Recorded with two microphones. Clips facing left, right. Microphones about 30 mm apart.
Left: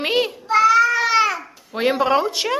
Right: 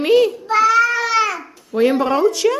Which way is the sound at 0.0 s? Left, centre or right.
Left.